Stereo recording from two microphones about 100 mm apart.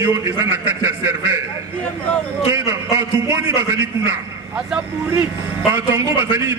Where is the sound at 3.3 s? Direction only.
25° right (ahead or behind).